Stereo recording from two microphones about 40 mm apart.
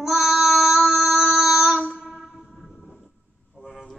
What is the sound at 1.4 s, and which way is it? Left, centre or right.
Child singing, centre.